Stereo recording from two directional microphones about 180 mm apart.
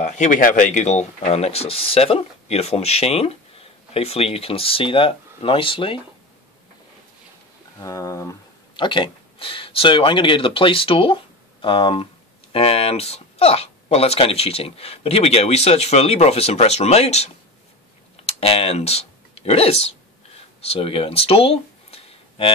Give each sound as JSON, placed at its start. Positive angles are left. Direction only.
{"t": 0.0, "sound": "speech", "side_deg": 45}
{"t": 7.8, "sound": "speech", "side_deg": 20}